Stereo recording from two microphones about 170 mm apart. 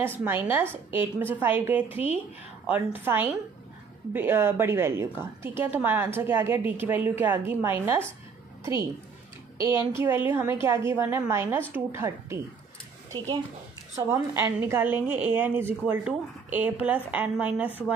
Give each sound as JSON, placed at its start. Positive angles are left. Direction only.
{"t": 0.0, "sound": "a woman's voice", "side_deg": -10}
{"t": 9.6, "sound": "a woman's voice", "side_deg": -15}